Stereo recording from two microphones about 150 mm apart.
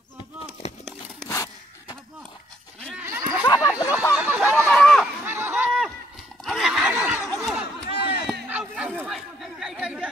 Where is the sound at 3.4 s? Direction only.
20° left (ahead or behind).